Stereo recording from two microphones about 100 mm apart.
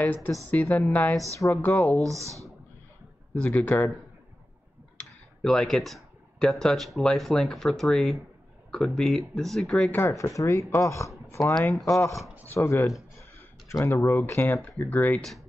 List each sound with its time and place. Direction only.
0.0 s a woman's voice: 20° left (ahead or behind)
1.8 s speech: 5° left (ahead or behind)
2.0 s speech: 30° right (ahead or behind)
3.4 s a woman's voice: 15° left (ahead or behind)
5.4 s speech: 5° left (ahead or behind)
9.8 s a woman's voice: 20° left (ahead or behind)
10.1 s a woman's voice: 30° left (ahead or behind); by 15.2 s 15° left (ahead or behind)